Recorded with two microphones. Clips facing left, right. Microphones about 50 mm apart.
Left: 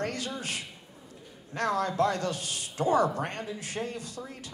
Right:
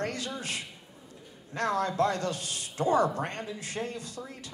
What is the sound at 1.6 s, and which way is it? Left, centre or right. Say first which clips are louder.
A man's voice: even; right.